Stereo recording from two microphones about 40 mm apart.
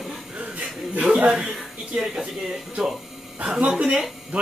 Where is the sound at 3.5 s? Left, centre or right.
Centre.